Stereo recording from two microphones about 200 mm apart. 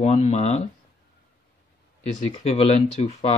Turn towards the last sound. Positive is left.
turn(degrees=35)  # may be behind; listen again after turning